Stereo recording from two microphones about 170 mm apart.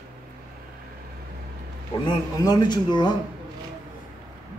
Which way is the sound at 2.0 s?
25° left (ahead or behind).